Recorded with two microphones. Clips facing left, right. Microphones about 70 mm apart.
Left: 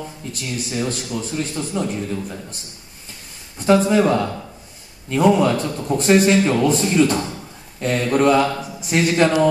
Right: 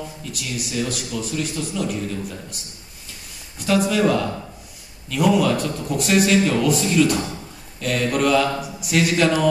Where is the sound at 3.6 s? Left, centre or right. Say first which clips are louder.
Left 4 dB; left.